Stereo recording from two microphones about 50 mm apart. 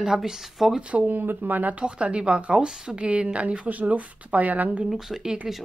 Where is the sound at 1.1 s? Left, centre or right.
Right.